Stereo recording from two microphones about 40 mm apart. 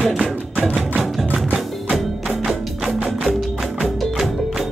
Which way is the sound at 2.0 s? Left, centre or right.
Centre.